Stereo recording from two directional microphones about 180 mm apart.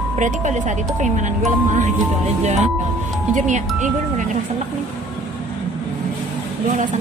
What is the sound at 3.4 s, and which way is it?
Speech, 40° right (ahead or behind).